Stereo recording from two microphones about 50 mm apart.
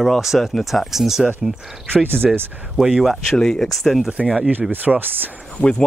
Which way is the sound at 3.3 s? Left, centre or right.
Centre.